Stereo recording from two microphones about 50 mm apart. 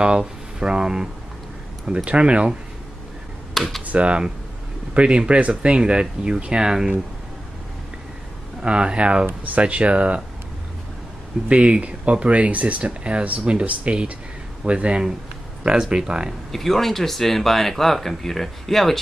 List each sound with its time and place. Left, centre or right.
0.0 s speech: centre
2.0 s speech: right
3.5 s speech: centre
3.8 s speech: right
8.6 s speech: right
11.4 s speech: right
16.5 s speech: centre